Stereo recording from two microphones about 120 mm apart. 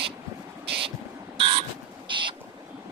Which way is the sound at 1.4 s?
50° right (ahead or behind).